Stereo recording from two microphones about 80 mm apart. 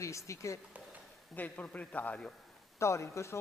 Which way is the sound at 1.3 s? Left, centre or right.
Centre.